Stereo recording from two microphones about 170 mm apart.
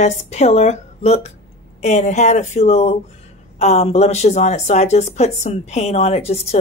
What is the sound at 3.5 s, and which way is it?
Speech, 35° left (ahead or behind).